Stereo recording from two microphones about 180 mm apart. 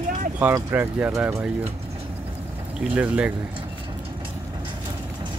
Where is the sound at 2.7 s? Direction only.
5° right (ahead or behind).